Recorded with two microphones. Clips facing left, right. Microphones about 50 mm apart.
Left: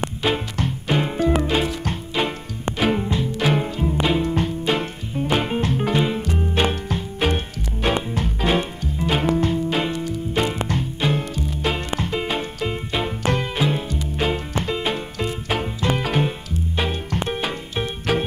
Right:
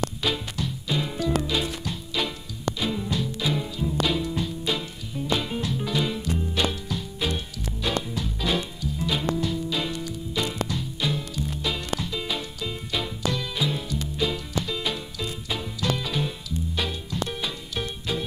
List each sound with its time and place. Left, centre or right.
0.2 s music: left
1.1 s music: left
3.3 s music: left